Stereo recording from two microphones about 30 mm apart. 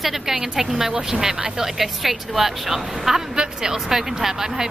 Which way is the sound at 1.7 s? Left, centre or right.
Centre.